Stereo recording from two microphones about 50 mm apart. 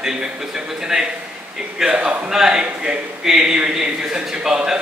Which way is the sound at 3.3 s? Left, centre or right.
Centre.